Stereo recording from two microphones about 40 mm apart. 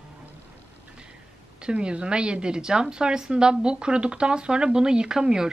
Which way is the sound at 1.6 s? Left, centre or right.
Right.